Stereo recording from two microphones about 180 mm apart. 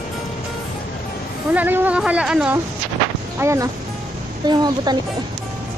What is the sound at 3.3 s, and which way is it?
Speech, 15° right (ahead or behind).